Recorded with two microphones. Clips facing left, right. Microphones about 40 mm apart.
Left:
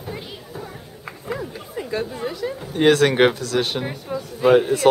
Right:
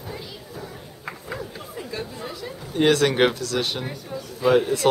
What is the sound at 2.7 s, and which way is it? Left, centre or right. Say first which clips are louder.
Speech: left 3 dB; centre.